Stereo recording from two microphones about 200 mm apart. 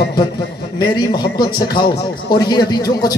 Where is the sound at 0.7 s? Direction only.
20° left (ahead or behind).